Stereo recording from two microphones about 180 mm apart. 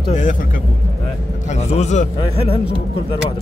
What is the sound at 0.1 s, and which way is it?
Speech, 45° left (ahead or behind).